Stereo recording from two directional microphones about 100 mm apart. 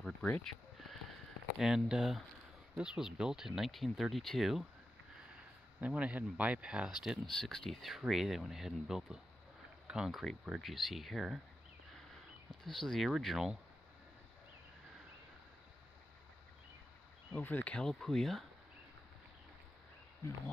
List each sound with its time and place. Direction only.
0.0 s a sound: 10° left (ahead or behind)
1.6 s speech: 5° right (ahead or behind)
5.3 s a man's voice: 15° right (ahead or behind)
7.1 s speech: centre (ahead or behind)
11.9 s a sound: 5° left (ahead or behind)
12.6 s speech: centre (ahead or behind)
17.3 s speech: 20° left (ahead or behind); by 18.4 s centre (ahead or behind)